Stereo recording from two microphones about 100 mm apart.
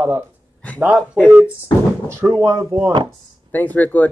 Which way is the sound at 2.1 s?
25° right (ahead or behind).